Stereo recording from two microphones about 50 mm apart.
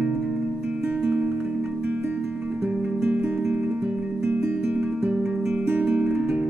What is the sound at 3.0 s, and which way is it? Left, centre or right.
Music, right.